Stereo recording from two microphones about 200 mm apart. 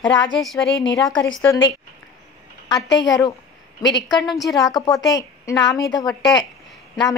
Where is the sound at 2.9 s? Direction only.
20° left (ahead or behind).